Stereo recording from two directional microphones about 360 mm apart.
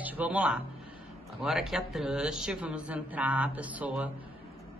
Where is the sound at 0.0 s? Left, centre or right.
Centre.